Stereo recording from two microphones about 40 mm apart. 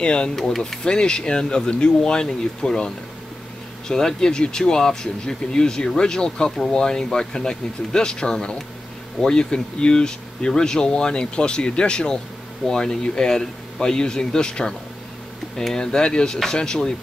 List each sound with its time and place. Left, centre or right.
0.0 s speech: left
0.4 s speech: centre
0.8 s speech: centre